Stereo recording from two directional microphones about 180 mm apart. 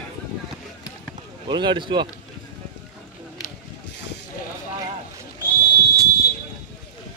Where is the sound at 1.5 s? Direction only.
25° right (ahead or behind).